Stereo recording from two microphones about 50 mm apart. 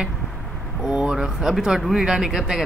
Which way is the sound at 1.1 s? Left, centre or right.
Centre.